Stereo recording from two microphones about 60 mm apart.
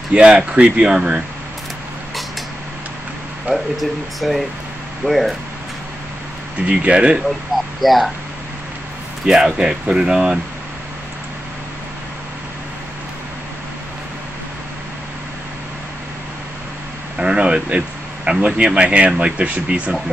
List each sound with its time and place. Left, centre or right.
0.1 s speech: centre
3.5 s speech: centre
6.6 s speech: centre
7.8 s speech: centre
9.2 s speech: centre
17.2 s speech: centre